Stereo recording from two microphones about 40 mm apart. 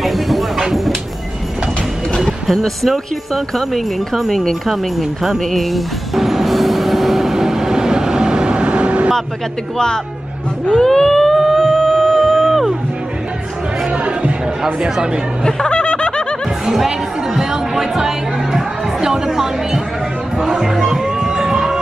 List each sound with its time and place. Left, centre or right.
0.0 s a sound: centre
2.2 s speech: centre
5.4 s music: centre; by 9.1 s right
10.7 s a sound: centre
12.4 s music: centre
13.9 s music: right
14.8 s speech: right
15.4 s snicker: left
16.6 s music: centre
20.8 s music: centre
21.4 s a sound: centre